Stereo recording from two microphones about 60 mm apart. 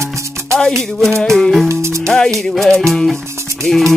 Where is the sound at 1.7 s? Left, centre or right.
Right.